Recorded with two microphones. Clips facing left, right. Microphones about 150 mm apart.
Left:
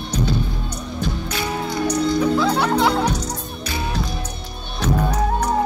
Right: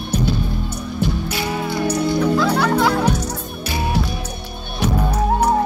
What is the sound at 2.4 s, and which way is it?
Music, 20° left (ahead or behind).